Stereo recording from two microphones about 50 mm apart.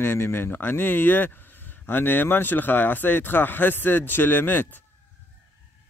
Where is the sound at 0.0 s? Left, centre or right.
Left.